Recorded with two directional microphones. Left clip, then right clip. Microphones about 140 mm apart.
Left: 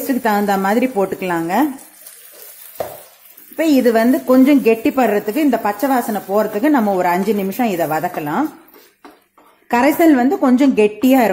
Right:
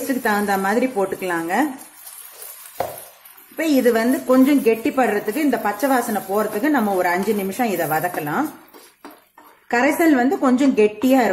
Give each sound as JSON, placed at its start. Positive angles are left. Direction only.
{"t": 0.0, "sound": "a woman's voice", "side_deg": 35}
{"t": 3.5, "sound": "a woman's voice", "side_deg": 30}
{"t": 9.7, "sound": "a woman's voice", "side_deg": 35}